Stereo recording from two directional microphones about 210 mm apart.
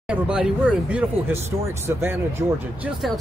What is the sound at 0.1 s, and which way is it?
Speech, 5° right (ahead or behind).